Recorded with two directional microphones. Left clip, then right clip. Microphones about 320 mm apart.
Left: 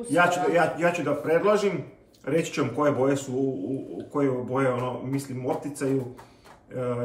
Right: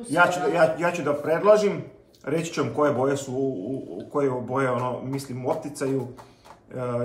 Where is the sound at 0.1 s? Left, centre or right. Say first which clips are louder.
Right 1 dB; centre.